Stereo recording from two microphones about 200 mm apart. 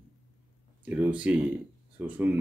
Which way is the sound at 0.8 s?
5° right (ahead or behind).